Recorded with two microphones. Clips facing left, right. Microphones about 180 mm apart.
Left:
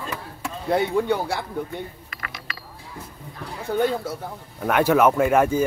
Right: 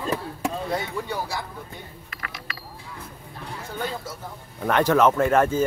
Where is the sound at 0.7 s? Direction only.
60° left (ahead or behind).